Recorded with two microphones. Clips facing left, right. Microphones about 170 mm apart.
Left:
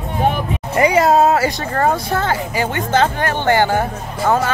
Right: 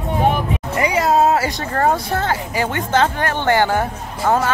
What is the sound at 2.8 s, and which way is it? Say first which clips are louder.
Speech: left 2 dB; 35° left (ahead or behind).